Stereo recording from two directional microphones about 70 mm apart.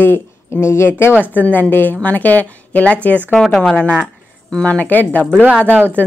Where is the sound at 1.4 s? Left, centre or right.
Left.